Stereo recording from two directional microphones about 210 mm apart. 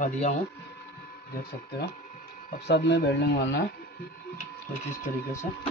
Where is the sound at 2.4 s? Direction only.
55° left (ahead or behind).